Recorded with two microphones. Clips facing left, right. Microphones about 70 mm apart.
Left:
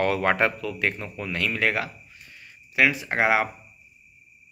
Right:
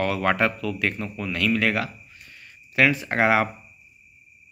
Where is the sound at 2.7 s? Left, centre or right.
Centre.